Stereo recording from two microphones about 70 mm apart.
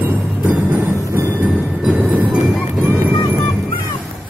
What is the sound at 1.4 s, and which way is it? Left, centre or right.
Music, centre.